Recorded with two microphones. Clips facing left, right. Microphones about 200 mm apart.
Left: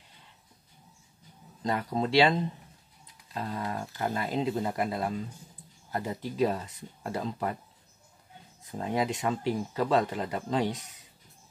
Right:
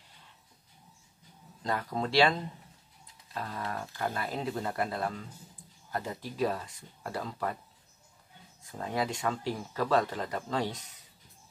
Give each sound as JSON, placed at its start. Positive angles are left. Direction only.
{"t": 1.6, "sound": "speech", "side_deg": 20}
{"t": 3.3, "sound": "speech", "side_deg": 20}
{"t": 8.7, "sound": "speech", "side_deg": 20}